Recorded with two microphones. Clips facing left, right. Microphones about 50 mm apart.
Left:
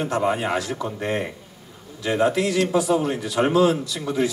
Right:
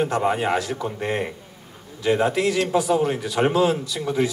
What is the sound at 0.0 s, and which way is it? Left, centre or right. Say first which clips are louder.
A man's voice: right 1 dB; right.